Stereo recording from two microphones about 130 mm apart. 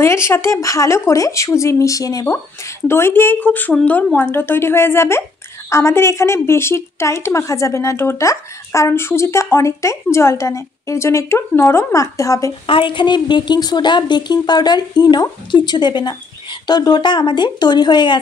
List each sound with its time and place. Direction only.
0.0 s a woman's voice: 20° left (ahead or behind)
12.6 s a woman's voice: 40° left (ahead or behind)